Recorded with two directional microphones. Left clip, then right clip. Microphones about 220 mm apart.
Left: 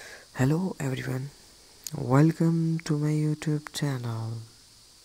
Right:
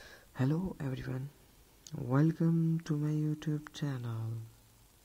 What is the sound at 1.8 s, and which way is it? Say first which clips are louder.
Speech: left 9 dB; 35° left (ahead or behind).